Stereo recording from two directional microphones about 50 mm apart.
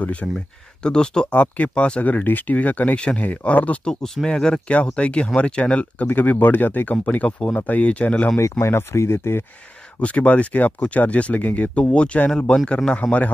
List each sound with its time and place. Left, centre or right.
0.0 s speech: left
1.3 s speech: left
4.0 s speech: centre
4.3 s speech: centre
6.0 s speech: left
8.4 s speech: left
8.9 s speech: left
9.9 s speech: left